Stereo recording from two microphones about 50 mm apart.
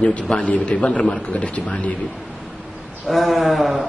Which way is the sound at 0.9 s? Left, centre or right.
Centre.